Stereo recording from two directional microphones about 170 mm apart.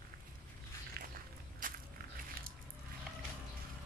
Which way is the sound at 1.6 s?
55° right (ahead or behind).